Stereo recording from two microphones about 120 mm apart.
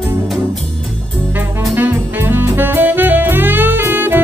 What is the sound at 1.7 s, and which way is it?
Music, 20° right (ahead or behind).